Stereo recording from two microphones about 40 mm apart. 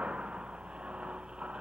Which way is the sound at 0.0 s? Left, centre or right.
Right.